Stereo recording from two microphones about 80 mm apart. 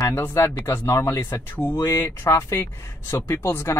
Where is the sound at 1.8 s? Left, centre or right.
Left.